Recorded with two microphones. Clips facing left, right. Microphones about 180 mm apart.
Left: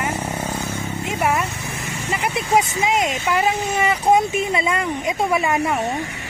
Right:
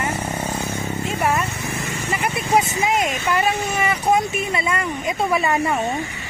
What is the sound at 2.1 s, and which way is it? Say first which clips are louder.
Speech: left 1 dB; 20° left (ahead or behind).